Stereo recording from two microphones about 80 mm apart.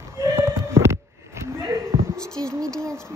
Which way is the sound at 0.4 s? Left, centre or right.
Right.